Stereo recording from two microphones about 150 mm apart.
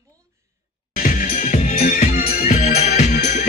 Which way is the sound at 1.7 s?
65° left (ahead or behind).